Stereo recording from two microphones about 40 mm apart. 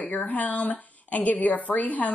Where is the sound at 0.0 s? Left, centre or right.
Left.